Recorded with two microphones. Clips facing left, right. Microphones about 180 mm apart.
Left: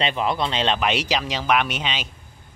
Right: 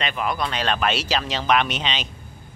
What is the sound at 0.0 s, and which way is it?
Speech, 25° left (ahead or behind).